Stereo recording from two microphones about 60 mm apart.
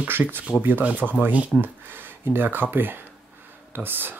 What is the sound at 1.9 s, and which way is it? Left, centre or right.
Speech, right.